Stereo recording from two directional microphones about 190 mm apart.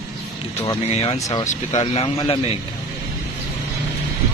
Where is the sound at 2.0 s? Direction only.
25° left (ahead or behind).